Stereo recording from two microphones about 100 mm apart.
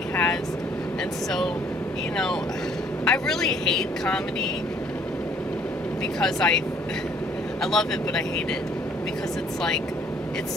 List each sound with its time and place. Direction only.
0.1 s vehicle: 15° left (ahead or behind)
3.1 s speech: 5° left (ahead or behind)
6.1 s speech: 5° left (ahead or behind)
7.6 s speech: 5° left (ahead or behind)